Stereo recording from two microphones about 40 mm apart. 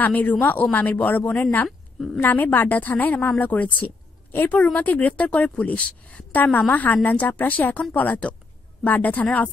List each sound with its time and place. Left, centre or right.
0.0 s speech: left
2.1 s a woman's voice: left
2.7 s a woman's voice: left
6.3 s a woman's voice: left